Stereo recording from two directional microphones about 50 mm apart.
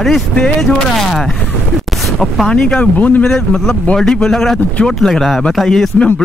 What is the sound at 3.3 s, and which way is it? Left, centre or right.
Speech, centre.